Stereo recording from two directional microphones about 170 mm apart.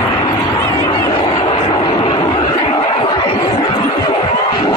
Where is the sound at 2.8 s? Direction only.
30° left (ahead or behind).